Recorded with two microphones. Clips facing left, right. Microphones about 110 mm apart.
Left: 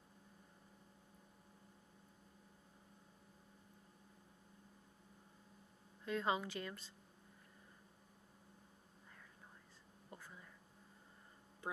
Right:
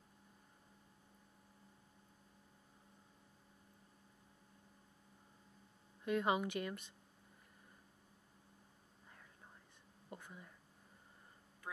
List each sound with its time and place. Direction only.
6.0 s speech: 15° right (ahead or behind)
10.0 s whispering: 15° right (ahead or behind)
11.6 s a sound: 25° left (ahead or behind)